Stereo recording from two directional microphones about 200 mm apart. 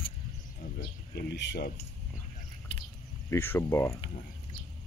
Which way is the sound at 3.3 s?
10° left (ahead or behind).